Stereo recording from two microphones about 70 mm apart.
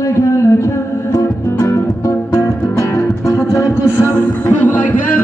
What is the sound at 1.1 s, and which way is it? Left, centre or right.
Music, left.